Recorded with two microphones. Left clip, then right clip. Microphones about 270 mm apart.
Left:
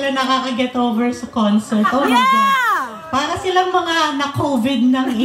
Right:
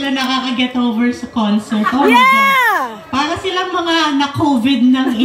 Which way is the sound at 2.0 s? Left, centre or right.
Centre.